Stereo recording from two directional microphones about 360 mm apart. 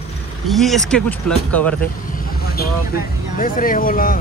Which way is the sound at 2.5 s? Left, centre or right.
Left.